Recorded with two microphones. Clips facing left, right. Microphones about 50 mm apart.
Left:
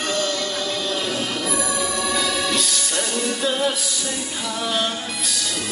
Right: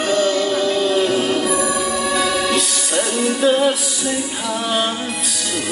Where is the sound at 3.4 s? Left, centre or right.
Right.